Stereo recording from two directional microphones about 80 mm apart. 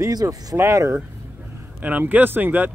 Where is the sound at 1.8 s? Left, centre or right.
Right.